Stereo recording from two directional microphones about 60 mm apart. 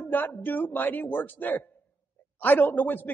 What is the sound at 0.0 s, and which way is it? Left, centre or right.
Speech, left.